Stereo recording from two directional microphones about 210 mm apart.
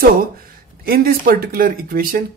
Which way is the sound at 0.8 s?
45° right (ahead or behind).